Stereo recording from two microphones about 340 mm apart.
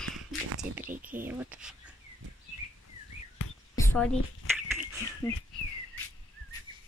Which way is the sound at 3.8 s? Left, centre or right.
Centre.